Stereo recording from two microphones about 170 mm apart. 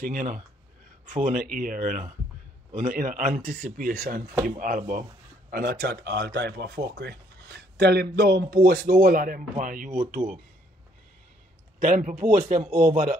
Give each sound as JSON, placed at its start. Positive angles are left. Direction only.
{"t": 0.0, "sound": "speech", "side_deg": -55}
{"t": 5.5, "sound": "speech", "side_deg": -65}
{"t": 11.8, "sound": "speech", "side_deg": -45}